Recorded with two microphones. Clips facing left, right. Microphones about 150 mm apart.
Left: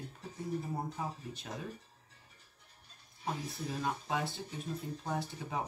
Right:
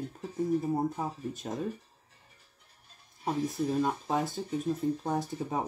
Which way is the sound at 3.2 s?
45° right (ahead or behind).